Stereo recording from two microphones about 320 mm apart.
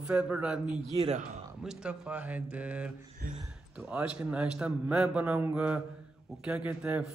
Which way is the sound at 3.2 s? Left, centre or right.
Right.